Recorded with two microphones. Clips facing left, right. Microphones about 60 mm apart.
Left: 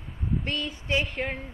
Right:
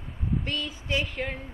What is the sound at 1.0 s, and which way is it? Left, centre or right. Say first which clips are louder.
Speech: left 1 dB; centre.